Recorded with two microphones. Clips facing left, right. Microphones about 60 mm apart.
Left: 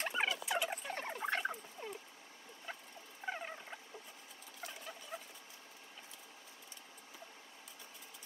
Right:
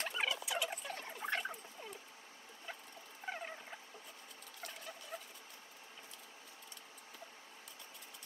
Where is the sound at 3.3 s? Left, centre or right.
Centre.